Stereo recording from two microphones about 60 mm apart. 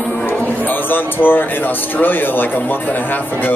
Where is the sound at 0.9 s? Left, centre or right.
Left.